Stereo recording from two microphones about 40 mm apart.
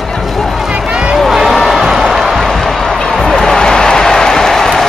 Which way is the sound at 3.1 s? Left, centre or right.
Centre.